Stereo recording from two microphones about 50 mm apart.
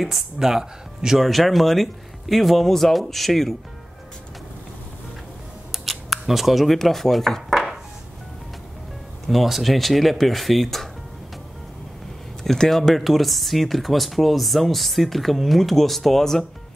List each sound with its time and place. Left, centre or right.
0.0 s speech: centre
5.7 s speech: centre
7.4 s a sound: centre
9.3 s speech: centre
12.4 s speech: centre